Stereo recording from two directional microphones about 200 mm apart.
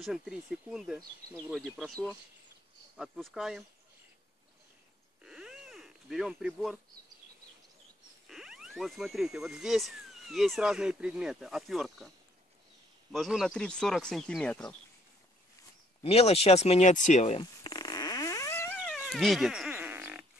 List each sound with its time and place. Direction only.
0.0 s speech: centre (ahead or behind)
5.2 s a sound: 5° right (ahead or behind)
8.3 s speech: centre (ahead or behind)
13.1 s speech: centre (ahead or behind)
16.0 s speech: 30° left (ahead or behind)
17.4 s fart: 20° left (ahead or behind)
18.9 s cat: centre (ahead or behind)